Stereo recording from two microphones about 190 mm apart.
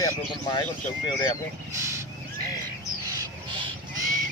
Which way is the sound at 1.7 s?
15° right (ahead or behind).